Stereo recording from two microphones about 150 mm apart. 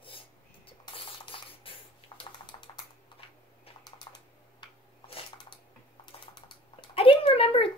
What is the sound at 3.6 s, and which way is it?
Typing, 30° left (ahead or behind).